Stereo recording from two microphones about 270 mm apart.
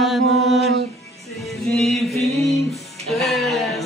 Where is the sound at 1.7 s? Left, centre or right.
Centre.